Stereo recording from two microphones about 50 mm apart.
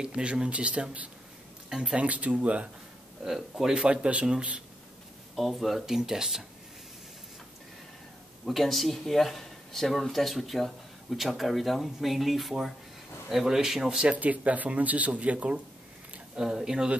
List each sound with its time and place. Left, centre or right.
0.0 s speech: centre
3.3 s speech: centre
3.8 s speech: right
5.3 s speech: centre
5.9 s speech: centre
8.5 s speech: centre
14.1 s speech: right
16.3 s speech: centre